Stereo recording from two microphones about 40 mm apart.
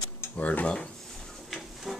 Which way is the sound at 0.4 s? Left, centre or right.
Left.